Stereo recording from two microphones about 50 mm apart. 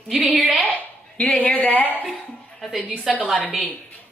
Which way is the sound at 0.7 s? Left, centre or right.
Left.